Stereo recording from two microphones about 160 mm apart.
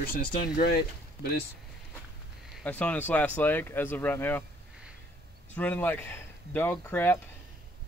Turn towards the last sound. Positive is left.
turn(degrees=10)  # may be behind; listen again after turning